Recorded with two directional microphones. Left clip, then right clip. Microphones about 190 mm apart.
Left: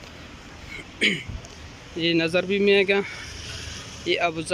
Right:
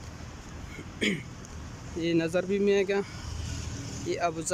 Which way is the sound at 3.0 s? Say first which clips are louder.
Left 8 dB; 50° right (ahead or behind).